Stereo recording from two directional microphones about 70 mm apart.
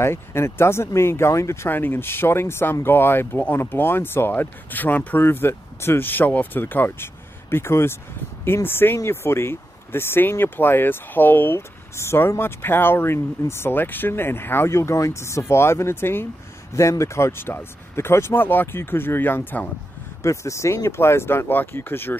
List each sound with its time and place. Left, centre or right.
0.0 s speech: left
1.7 s speech: left
20.2 s speech: left